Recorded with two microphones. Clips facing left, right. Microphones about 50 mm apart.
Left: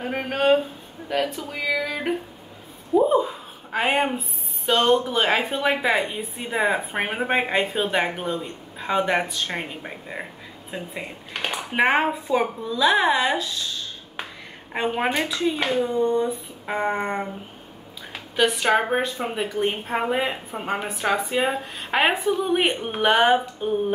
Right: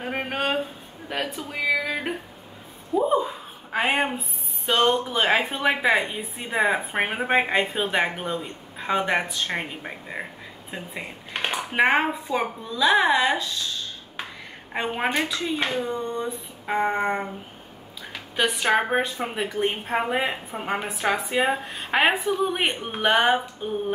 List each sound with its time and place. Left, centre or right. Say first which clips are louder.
0.0 s a sound: left 4 dB; centre
1.0 s speech: left 4 dB; centre
3.1 s a sound: left 2 dB; centre
5.5 s a woman's voice: even; centre
11.3 s a sound: right 1 dB; centre
11.7 s a woman's voice: left 1 dB; centre
14.7 s a woman's voice: left 2 dB; centre
18.3 s a woman's voice: left 2 dB; centre
21.3 s speech: even; centre
21.7 s a woman's voice: even; centre